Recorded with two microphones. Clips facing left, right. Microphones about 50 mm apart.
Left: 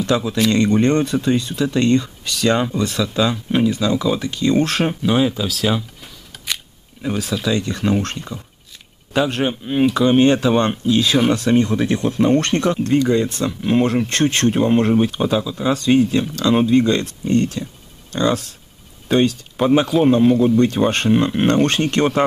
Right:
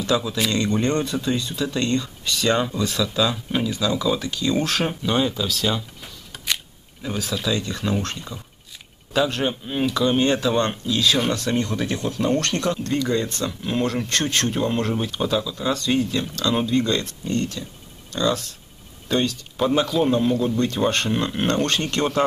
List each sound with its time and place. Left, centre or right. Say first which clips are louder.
0.1 s speech: left 4 dB; centre
7.0 s speech: left 5 dB; centre
9.1 s speech: left 3 dB; centre
12.8 s speech: left 6 dB; centre